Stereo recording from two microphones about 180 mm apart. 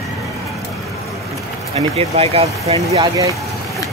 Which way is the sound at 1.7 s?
30° right (ahead or behind).